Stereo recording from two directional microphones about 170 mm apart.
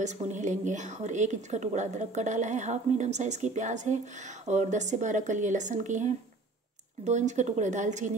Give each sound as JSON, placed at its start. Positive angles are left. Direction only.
{"t": 0.0, "sound": "a woman's voice", "side_deg": -45}